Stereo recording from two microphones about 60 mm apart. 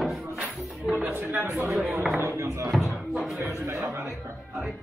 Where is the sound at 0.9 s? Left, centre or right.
Right.